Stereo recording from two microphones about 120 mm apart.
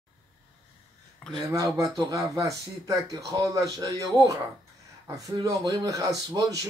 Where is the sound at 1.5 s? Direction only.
30° right (ahead or behind).